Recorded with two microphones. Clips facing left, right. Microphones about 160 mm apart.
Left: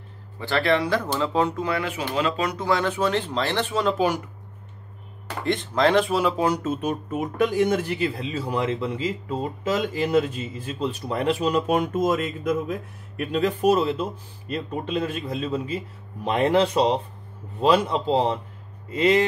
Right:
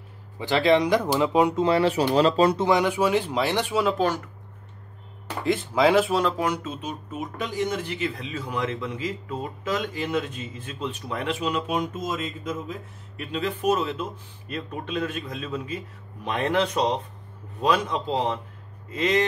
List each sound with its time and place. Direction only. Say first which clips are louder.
0.4 s speech: right 2 dB; 15° right (ahead or behind)
1.6 s speech: right 6 dB; 30° right (ahead or behind); by 3.9 s 10° right (ahead or behind)
3.9 s speech: left 1 dB; 10° left (ahead or behind)
5.4 s speech: even; 5° right (ahead or behind)
6.3 s speech: left 3 dB; 30° left (ahead or behind)
6.6 s speech: left 7 dB; 50° left (ahead or behind)
8.0 s speech: left 4 dB; 35° left (ahead or behind); by 12.7 s 60° left (ahead or behind)
13.2 s a man's voice: left 5 dB; 45° left (ahead or behind)